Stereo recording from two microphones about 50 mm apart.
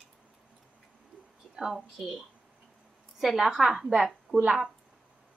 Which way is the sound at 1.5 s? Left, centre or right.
Centre.